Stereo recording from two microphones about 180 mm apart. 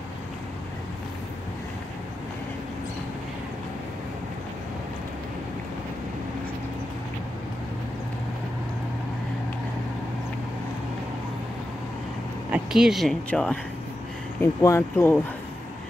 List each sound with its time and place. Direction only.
12.4 s speech: 5° right (ahead or behind); by 15.1 s 15° left (ahead or behind)